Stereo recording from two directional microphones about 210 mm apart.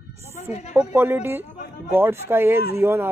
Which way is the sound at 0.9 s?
10° right (ahead or behind).